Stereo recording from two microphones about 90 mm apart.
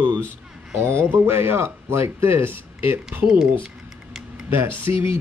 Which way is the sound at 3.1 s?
10° right (ahead or behind).